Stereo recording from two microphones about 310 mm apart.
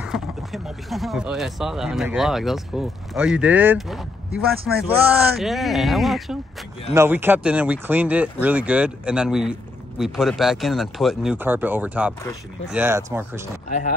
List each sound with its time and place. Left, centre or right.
0.0 s speech: centre
13.7 s speech: left